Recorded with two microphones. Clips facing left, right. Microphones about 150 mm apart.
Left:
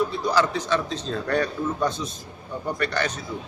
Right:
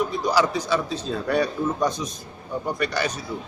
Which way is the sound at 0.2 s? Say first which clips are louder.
Right 1 dB; 10° right (ahead or behind).